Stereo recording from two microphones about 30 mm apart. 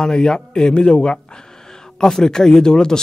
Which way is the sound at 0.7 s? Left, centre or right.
Left.